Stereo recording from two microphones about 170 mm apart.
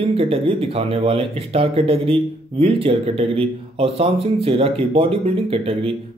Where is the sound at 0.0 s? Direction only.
35° right (ahead or behind).